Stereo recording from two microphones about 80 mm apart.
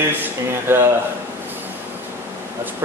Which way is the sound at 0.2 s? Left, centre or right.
Right.